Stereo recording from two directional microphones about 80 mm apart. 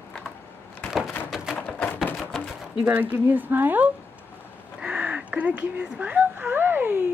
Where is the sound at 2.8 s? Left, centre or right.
Right.